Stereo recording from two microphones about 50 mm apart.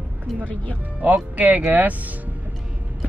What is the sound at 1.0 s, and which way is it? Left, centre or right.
Speech, right.